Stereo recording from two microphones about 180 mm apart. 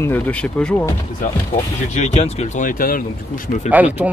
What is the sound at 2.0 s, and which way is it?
Speech, 35° left (ahead or behind).